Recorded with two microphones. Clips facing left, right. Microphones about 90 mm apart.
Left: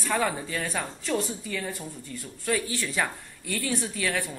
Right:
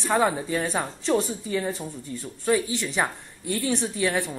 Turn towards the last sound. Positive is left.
turn(degrees=-25)  # may be behind; listen again after turning